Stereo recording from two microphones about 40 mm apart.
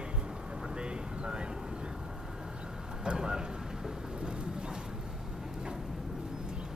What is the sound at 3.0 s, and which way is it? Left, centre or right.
Speech, centre.